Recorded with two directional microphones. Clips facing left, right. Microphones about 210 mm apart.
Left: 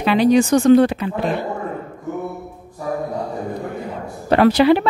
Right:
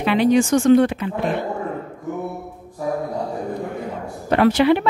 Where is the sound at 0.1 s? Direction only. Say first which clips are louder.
Left 2 dB; 35° left (ahead or behind).